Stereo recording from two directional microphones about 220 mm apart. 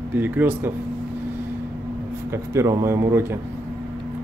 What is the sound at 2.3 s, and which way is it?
Speech, 10° right (ahead or behind).